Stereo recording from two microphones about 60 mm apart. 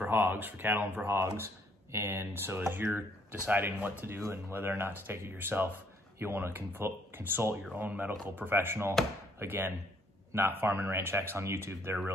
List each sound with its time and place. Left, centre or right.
0.1 s speech: right
2.9 s speech: right
4.3 s speech: right
7.7 s speech: right